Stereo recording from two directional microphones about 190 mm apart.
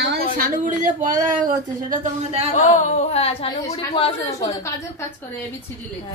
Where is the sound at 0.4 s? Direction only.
45° right (ahead or behind).